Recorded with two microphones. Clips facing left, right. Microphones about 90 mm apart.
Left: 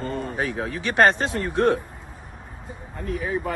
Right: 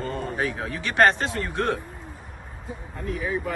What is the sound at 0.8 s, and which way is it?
Speech, 20° left (ahead or behind).